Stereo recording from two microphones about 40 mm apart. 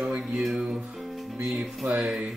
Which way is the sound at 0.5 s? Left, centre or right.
Right.